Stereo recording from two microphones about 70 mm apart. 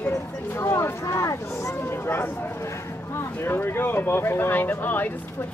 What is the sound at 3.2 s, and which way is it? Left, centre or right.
Speech, left.